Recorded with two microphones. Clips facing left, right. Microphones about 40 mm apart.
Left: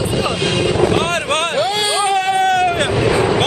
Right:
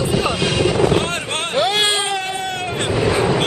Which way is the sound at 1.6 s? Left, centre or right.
Right.